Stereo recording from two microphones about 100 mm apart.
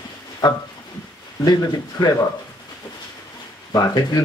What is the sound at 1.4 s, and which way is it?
Speech, 40° left (ahead or behind).